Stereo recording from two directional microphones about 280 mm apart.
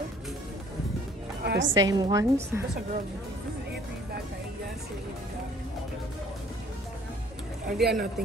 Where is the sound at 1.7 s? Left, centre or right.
Centre.